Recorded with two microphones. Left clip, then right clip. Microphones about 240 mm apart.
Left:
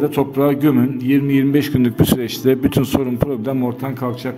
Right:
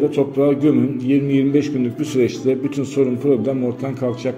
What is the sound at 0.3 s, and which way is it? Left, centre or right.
A man's voice, left.